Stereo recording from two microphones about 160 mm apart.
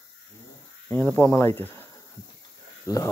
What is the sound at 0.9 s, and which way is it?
Speech, 15° left (ahead or behind).